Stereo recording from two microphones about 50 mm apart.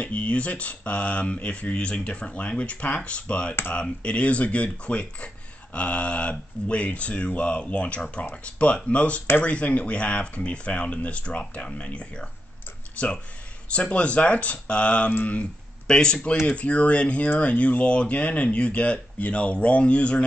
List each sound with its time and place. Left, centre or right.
0.0 s speech: left
16.4 s speech: left